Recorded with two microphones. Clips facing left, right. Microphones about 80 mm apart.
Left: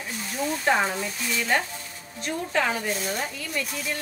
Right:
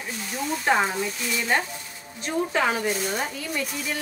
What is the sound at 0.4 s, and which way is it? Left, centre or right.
Speech, centre.